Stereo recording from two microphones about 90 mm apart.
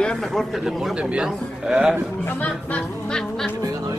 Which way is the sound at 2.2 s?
20° left (ahead or behind).